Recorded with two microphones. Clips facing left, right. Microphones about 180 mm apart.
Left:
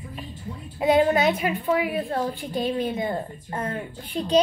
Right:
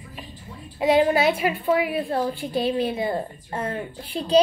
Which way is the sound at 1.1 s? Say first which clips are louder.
Right 1 dB; 10° right (ahead or behind).